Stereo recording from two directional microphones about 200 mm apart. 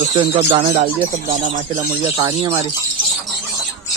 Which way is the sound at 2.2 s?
25° right (ahead or behind).